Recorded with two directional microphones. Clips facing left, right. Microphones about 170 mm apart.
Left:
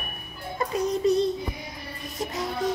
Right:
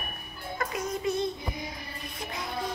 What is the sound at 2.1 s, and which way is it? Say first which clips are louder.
Music: left 8 dB; 40° left (ahead or behind).